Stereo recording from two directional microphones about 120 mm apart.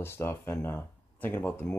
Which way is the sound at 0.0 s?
20° left (ahead or behind).